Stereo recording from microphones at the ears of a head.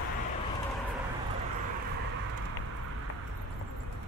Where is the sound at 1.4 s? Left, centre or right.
Right.